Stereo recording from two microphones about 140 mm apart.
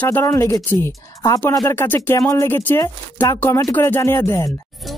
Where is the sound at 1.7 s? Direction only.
15° left (ahead or behind).